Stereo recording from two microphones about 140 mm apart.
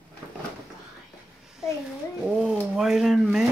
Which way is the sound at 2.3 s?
Centre (ahead or behind).